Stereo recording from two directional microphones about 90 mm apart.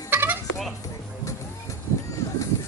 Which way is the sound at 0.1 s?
25° right (ahead or behind).